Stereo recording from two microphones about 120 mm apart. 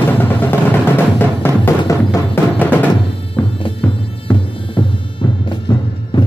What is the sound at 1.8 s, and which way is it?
Music, 25° left (ahead or behind).